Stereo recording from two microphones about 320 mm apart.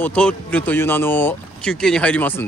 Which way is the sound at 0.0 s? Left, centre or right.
Centre.